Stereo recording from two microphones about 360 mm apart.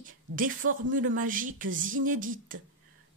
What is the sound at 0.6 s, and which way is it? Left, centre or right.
Speech, right.